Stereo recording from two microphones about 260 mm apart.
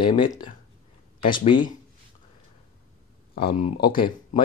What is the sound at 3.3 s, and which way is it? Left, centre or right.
Speech, left.